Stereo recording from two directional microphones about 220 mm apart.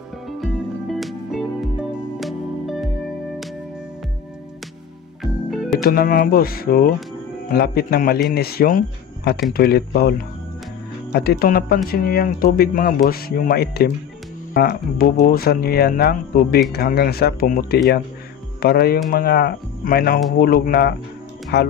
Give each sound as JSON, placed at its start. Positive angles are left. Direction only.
{"t": 0.4, "sound": "music", "side_deg": 0}
{"t": 5.2, "sound": "music", "side_deg": 0}
{"t": 5.8, "sound": "speech", "side_deg": 40}